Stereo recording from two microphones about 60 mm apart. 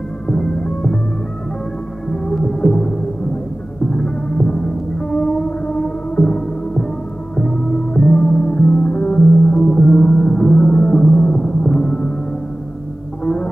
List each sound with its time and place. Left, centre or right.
0.3 s music: centre
2.0 s music: centre
13.2 s music: centre